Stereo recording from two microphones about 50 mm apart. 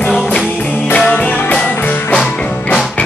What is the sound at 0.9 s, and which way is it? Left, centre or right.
Music, left.